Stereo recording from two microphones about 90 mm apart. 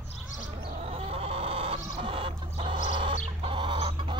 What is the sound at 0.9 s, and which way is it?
Chicken, 90° right.